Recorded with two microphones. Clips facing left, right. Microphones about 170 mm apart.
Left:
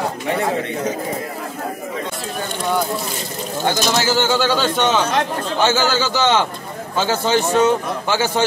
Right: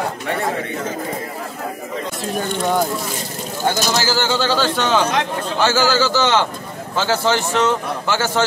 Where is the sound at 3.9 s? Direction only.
10° left (ahead or behind).